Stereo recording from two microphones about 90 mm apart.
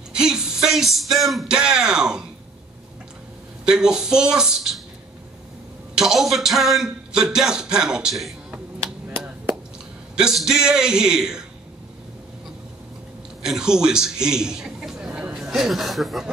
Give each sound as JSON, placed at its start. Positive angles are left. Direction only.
{"t": 0.1, "sound": "a sound", "side_deg": -5}
{"t": 3.6, "sound": "a man's voice", "side_deg": -5}
{"t": 5.9, "sound": "a sound", "side_deg": -5}
{"t": 8.7, "sound": "finger snapping", "side_deg": -25}
{"t": 10.1, "sound": "a man's voice", "side_deg": -5}
{"t": 13.4, "sound": "a man's voice", "side_deg": -5}